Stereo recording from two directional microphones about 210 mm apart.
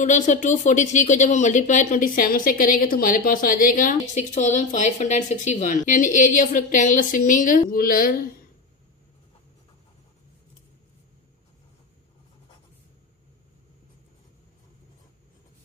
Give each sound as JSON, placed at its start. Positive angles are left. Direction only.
{"t": 0.0, "sound": "speech", "side_deg": 35}